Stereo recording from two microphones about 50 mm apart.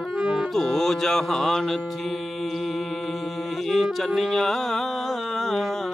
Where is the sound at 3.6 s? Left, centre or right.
Centre.